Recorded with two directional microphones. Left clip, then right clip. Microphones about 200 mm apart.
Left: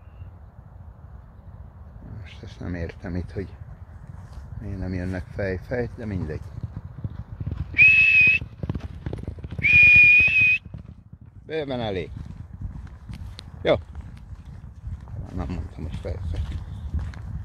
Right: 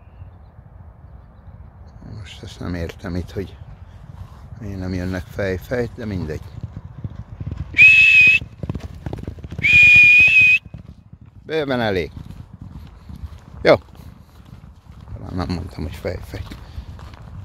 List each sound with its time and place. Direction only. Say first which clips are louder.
2.2 s speech: right 6 dB; 20° right (ahead or behind)
4.6 s speech: right 5 dB; 15° right (ahead or behind)
7.2 s horse: right 2 dB; 10° left (ahead or behind)
7.7 s whistle: right 5 dB; 15° right (ahead or behind)
9.0 s clip-clop: right 4 dB; 55° right (ahead or behind)
9.6 s whistle: right 4 dB; 20° right (ahead or behind)
11.4 s speech: right 7 dB; 35° right (ahead or behind)
13.6 s a sound: right 8 dB; 35° right (ahead or behind)
15.2 s a sound: right 8 dB; 35° right (ahead or behind)